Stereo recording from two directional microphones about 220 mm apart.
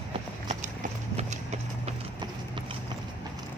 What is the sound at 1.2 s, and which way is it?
Clip-clop, 30° right (ahead or behind).